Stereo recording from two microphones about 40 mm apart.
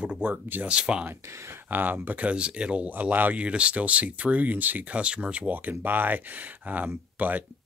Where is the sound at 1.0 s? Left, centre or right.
Right.